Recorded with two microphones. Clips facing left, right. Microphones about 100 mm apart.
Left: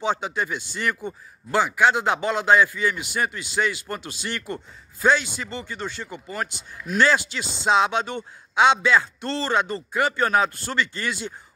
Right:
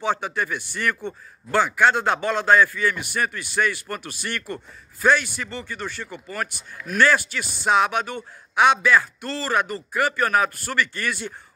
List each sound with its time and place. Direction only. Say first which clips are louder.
0.0 s a man's voice: even; 20° left (ahead or behind)